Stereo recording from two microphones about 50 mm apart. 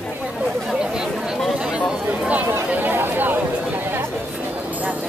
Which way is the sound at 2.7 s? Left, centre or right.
Right.